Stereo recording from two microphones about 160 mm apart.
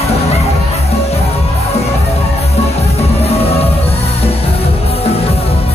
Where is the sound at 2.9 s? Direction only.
40° left (ahead or behind).